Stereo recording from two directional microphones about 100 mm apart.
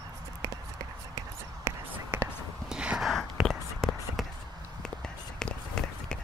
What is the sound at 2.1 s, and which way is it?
Whispering, 10° right (ahead or behind).